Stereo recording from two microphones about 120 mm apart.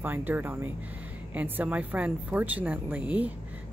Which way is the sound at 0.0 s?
15° right (ahead or behind).